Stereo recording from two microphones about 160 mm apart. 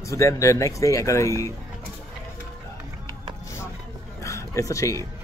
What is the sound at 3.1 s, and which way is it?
Vehicle, 20° left (ahead or behind).